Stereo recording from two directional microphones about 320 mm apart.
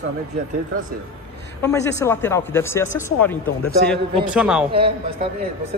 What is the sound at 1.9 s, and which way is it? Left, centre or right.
Speech, centre.